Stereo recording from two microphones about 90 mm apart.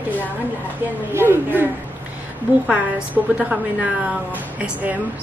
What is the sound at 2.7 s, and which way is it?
Speech, 10° right (ahead or behind).